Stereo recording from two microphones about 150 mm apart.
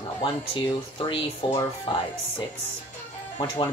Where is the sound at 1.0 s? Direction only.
30° left (ahead or behind).